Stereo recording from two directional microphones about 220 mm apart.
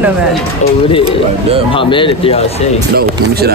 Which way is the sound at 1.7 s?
25° left (ahead or behind).